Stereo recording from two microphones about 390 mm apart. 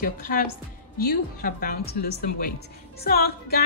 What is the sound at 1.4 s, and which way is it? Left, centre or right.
A woman's voice, left.